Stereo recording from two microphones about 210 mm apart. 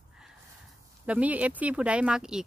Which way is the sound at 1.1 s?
5° right (ahead or behind).